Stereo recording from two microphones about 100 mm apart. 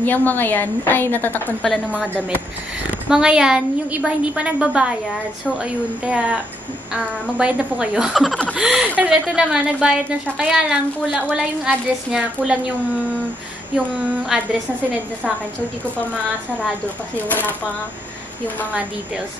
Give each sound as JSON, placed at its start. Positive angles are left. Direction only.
{"t": 0.0, "sound": "a woman's voice", "side_deg": 15}
{"t": 3.1, "sound": "a woman's voice", "side_deg": -5}
{"t": 8.1, "sound": "speech", "side_deg": 0}
{"t": 8.5, "sound": "a woman's voice", "side_deg": -10}
{"t": 17.3, "sound": "a woman's voice", "side_deg": 20}